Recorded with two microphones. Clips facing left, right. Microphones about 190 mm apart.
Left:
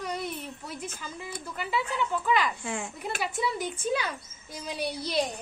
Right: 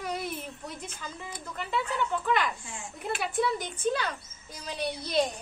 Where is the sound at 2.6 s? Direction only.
70° left (ahead or behind).